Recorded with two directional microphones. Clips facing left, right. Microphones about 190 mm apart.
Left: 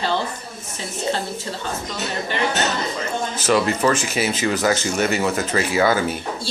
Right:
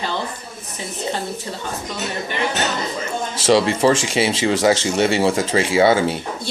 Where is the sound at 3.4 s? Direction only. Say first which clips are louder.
Right 4 dB; 25° right (ahead or behind).